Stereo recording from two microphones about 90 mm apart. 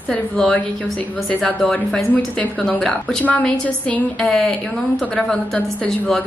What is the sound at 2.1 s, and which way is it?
Speech, 15° left (ahead or behind).